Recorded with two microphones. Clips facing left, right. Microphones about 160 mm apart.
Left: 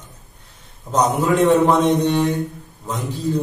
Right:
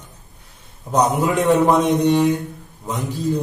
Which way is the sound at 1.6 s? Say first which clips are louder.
Even; 10° right (ahead or behind).